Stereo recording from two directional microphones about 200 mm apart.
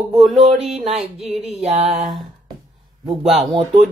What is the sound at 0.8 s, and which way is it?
Music, 30° right (ahead or behind).